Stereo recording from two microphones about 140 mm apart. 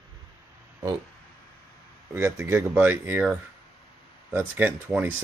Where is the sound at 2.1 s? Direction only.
15° right (ahead or behind).